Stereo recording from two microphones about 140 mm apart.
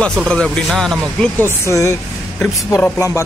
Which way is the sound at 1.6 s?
20° left (ahead or behind).